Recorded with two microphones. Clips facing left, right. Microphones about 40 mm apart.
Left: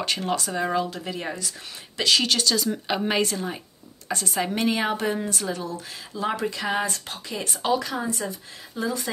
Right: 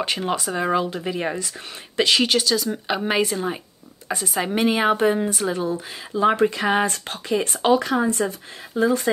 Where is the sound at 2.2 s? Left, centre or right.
Centre.